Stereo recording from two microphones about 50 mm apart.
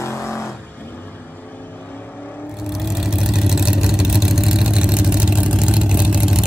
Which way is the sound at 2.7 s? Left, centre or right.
Centre.